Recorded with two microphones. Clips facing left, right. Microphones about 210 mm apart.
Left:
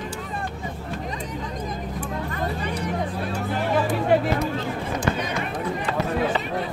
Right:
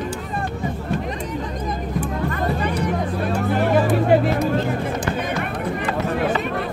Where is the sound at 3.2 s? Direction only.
60° right (ahead or behind).